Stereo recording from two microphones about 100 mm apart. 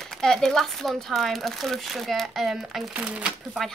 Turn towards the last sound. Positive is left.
turn(degrees=-10)  # may be behind; listen again after turning